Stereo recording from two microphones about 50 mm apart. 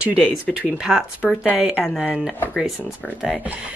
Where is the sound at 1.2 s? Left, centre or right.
Right; by 2.3 s centre.